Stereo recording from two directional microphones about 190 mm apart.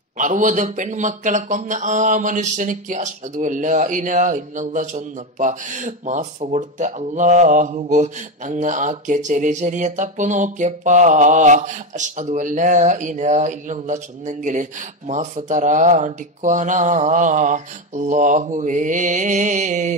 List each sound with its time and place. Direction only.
0.2 s speech: 40° right (ahead or behind)